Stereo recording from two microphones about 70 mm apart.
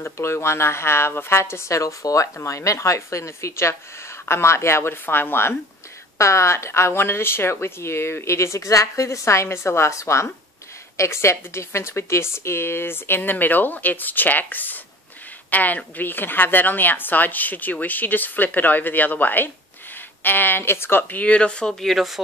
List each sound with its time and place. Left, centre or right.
0.0 s speech: left
6.1 s a woman's voice: left
21.2 s speech: centre
21.8 s speech: centre